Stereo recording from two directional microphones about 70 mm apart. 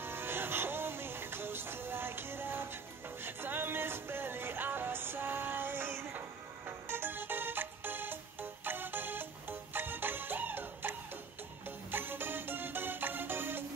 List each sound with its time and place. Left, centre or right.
0.0 s music: right